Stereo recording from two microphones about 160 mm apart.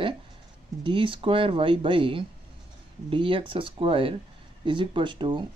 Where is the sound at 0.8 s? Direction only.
30° right (ahead or behind).